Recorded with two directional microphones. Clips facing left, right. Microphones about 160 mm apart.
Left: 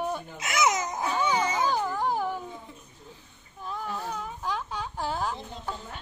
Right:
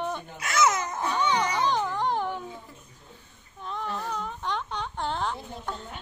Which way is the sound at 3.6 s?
5° left (ahead or behind).